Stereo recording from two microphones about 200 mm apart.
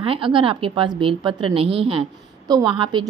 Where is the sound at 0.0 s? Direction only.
25° right (ahead or behind).